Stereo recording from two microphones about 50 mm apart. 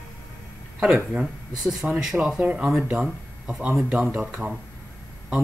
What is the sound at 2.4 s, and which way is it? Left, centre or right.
Speech, right.